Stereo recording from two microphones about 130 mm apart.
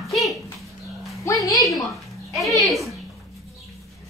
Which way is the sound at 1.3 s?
20° left (ahead or behind).